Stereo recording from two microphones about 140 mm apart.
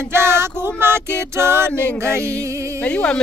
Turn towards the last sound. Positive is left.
turn(degrees=5)  # may be behind; listen again after turning